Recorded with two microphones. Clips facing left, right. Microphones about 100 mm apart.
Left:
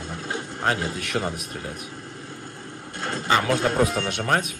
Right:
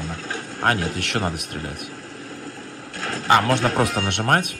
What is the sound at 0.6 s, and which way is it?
Speech, 70° right (ahead or behind).